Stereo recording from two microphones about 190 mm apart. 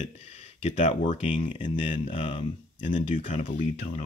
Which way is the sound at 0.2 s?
35° left (ahead or behind).